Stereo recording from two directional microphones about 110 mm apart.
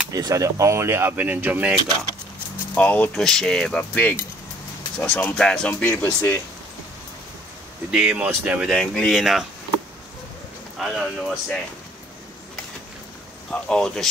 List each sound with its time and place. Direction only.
0.1 s speech: 35° right (ahead or behind); by 1.8 s 15° right (ahead or behind)
2.7 s speech: 15° left (ahead or behind)
7.9 s speech: 10° right (ahead or behind)
8.6 s speech: 5° left (ahead or behind)
10.8 s speech: centre (ahead or behind)
13.5 s speech: 10° left (ahead or behind)